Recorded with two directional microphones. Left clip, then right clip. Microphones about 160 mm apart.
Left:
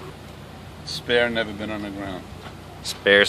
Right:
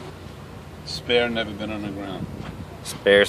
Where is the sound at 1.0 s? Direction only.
35° left (ahead or behind).